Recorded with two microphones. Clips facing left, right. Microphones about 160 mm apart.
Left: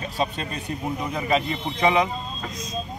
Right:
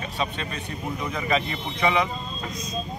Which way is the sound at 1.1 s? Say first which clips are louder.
Left 2 dB; 40° left (ahead or behind).